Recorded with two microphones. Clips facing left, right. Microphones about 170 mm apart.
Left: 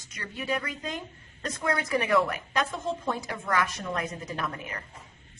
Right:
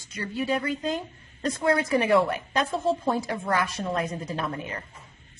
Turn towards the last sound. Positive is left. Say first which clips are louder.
# right 3 dB
turn(degrees=-30)  # may be behind; listen again after turning